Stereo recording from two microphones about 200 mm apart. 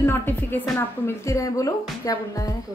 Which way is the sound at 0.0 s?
10° left (ahead or behind).